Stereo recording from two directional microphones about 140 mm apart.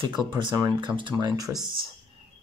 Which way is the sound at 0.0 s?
30° right (ahead or behind).